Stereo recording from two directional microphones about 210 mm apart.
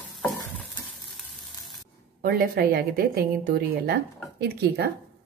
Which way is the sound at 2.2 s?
45° right (ahead or behind).